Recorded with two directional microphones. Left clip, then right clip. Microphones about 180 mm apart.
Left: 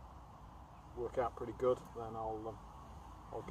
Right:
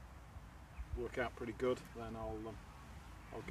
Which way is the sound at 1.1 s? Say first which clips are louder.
Left 4 dB; 35° right (ahead or behind).